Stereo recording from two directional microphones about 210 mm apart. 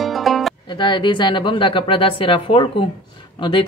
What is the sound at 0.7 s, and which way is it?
Speech, 20° left (ahead or behind).